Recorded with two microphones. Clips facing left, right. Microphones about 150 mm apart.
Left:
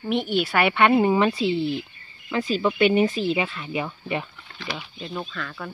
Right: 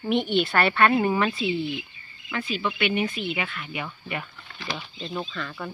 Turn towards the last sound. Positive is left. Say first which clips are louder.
# even
turn(degrees=0)  # may be behind; listen again after turning